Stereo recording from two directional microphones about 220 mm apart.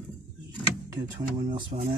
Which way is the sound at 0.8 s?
20° right (ahead or behind).